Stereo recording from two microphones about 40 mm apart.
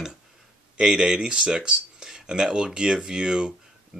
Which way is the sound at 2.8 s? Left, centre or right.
Centre.